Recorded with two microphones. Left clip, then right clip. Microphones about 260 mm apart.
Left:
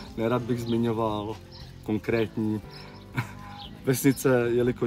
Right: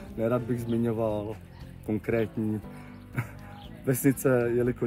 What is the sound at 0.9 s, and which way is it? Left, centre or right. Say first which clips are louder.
Speech: left 1 dB; centre.